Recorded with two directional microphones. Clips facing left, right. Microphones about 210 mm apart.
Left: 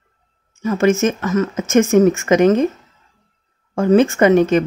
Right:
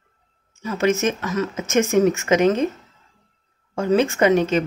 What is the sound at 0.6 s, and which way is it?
Speech, 50° left (ahead or behind).